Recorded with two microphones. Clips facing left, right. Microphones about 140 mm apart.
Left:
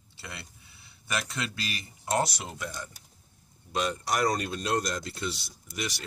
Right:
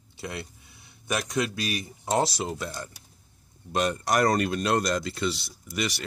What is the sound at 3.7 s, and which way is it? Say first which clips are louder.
Speech: right 4 dB; 50° right (ahead or behind).